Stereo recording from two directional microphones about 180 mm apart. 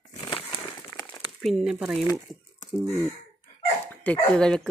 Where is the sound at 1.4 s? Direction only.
Centre (ahead or behind).